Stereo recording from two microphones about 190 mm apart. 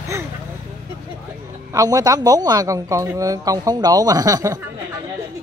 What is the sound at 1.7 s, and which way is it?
Speech, 20° right (ahead or behind).